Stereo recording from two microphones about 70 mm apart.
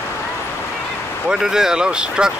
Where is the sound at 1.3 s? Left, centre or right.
Centre.